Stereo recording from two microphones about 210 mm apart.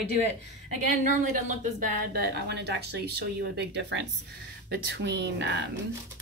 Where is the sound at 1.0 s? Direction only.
40° right (ahead or behind); by 5.6 s 55° right (ahead or behind).